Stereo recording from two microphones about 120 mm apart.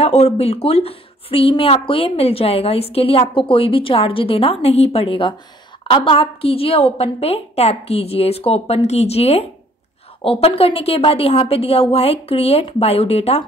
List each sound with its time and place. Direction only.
0.0 s a woman's voice: 60° left (ahead or behind)